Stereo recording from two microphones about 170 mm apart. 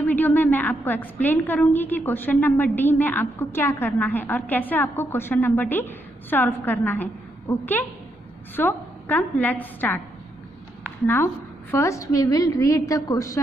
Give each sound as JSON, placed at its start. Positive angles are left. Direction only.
{"t": 0.0, "sound": "a woman's voice", "side_deg": 10}
{"t": 11.7, "sound": "a woman's voice", "side_deg": 15}